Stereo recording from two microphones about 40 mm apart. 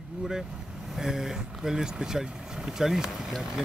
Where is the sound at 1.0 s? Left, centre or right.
Centre.